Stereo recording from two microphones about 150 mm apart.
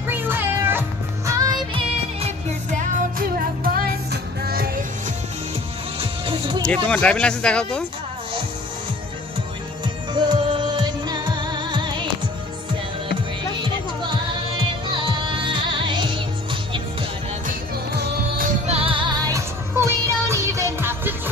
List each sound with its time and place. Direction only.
0.1 s music: 15° right (ahead or behind)
1.8 s music: 40° right (ahead or behind)
2.8 s music: 65° right (ahead or behind)
5.9 s music: 35° right (ahead or behind)
6.6 s speech: 5° left (ahead or behind)
10.1 s music: 30° right (ahead or behind)
14.6 s music: 35° right (ahead or behind)
17.5 s music: 80° right
18.7 s music: 40° right (ahead or behind); by 21.1 s 15° right (ahead or behind)